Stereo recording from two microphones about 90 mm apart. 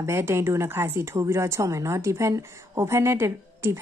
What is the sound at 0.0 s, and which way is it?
A woman's voice, 30° right (ahead or behind).